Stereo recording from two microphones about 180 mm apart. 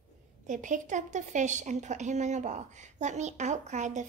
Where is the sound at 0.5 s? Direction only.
45° right (ahead or behind).